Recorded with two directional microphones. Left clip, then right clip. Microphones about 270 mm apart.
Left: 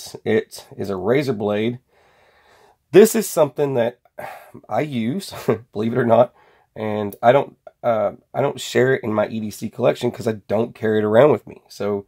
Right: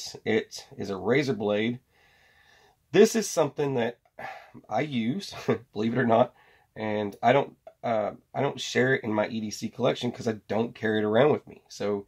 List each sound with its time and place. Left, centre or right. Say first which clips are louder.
0.0 s speech: left 7 dB; left
2.9 s speech: left 8 dB; left